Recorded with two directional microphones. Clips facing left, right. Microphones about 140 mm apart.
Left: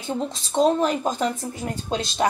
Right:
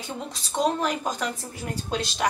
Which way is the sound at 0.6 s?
25° left (ahead or behind).